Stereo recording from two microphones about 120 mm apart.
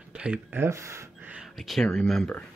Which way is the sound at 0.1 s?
10° right (ahead or behind).